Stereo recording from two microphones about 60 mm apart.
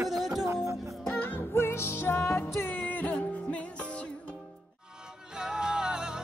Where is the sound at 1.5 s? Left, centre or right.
Left.